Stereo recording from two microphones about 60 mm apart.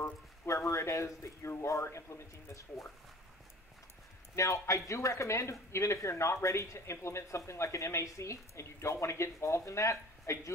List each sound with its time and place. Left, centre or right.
0.0 s speech: left
4.4 s speech: left